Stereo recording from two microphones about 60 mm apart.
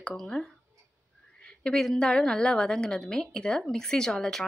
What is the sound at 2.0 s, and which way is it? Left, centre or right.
Speech, centre.